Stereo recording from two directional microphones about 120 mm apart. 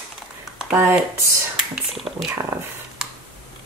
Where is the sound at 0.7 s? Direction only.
15° right (ahead or behind).